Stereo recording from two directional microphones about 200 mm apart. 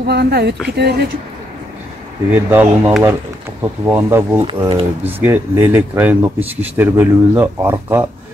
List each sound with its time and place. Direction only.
0.0 s speech: 55° right (ahead or behind)
2.3 s speech: 10° right (ahead or behind)
4.6 s speech: 25° right (ahead or behind)
5.0 s speech: 10° right (ahead or behind)